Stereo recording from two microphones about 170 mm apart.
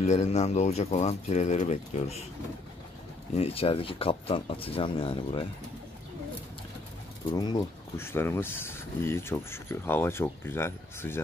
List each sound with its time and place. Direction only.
0.0 s speech: 40° left (ahead or behind)
3.3 s speech: 35° left (ahead or behind)
7.3 s speech: 25° left (ahead or behind)